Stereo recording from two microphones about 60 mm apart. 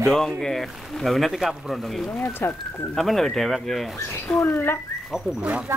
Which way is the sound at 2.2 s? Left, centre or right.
Left.